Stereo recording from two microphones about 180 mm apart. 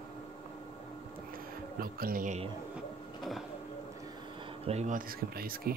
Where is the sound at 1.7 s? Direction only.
55° right (ahead or behind).